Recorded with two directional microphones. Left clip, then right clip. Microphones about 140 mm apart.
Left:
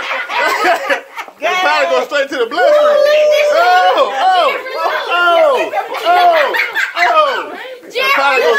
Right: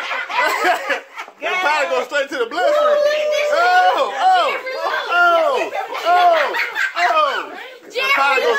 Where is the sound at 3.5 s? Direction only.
25° right (ahead or behind).